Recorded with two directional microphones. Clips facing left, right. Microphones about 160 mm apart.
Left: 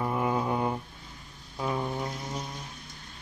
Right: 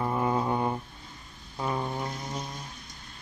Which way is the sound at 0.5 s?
5° left (ahead or behind).